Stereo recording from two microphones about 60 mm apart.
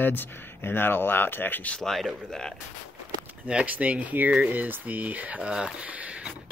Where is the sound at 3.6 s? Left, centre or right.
Right.